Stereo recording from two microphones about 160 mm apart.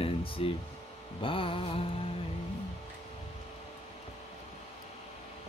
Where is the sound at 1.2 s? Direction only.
35° left (ahead or behind).